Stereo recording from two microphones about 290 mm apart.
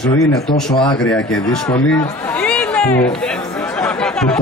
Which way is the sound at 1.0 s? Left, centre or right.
Centre.